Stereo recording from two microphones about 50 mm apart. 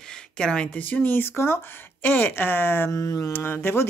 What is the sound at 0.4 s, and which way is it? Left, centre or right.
Speech, centre.